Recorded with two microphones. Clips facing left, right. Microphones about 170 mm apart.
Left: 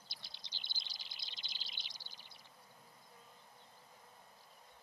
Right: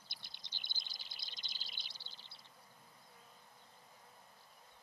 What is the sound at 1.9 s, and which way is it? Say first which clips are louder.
Bird: left 1 dB; 15° left (ahead or behind).